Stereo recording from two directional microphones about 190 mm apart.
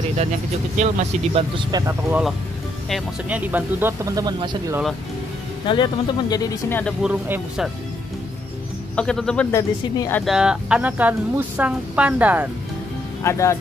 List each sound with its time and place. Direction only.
0.7 s speech: 40° right (ahead or behind)
1.6 s speech: 20° right (ahead or behind)
5.7 s speech: 25° left (ahead or behind)
6.8 s speech: 5° left (ahead or behind)
7.1 s speech: 10° right (ahead or behind)
8.9 s speech: 5° left (ahead or behind)
10.2 s speech: 5° right (ahead or behind)
13.2 s speech: 15° left (ahead or behind)